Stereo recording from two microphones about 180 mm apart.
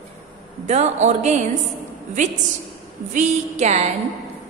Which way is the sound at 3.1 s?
40° right (ahead or behind).